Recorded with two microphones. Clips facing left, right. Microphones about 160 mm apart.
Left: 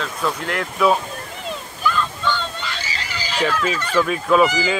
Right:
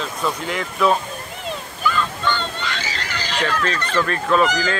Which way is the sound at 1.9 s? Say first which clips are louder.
Even; 5° left (ahead or behind).